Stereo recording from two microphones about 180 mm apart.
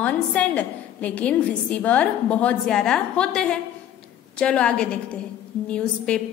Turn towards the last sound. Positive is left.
turn(degrees=5)  # may be behind; listen again after turning